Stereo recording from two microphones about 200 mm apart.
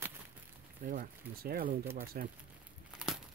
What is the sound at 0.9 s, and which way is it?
Speech, 45° right (ahead or behind).